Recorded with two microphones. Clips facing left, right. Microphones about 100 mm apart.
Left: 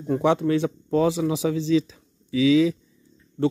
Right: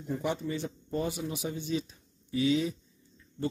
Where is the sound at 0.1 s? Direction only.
75° left (ahead or behind).